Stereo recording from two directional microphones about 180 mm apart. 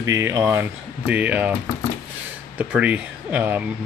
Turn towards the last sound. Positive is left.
turn(degrees=-10)  # may be behind; listen again after turning